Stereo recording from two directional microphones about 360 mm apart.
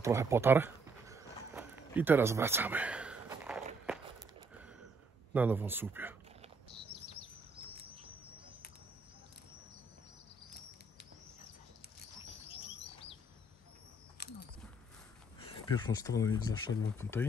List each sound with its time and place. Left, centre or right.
0.0 s walk: centre
5.3 s speech: centre
14.2 s a sound: left
15.5 s speech: centre
16.3 s speech: left
16.9 s speech: centre